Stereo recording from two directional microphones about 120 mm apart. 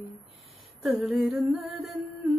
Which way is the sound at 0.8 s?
Centre (ahead or behind).